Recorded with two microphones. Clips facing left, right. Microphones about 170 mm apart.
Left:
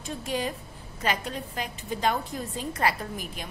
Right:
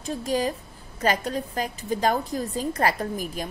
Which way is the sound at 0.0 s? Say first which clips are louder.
Right 5 dB; 35° right (ahead or behind).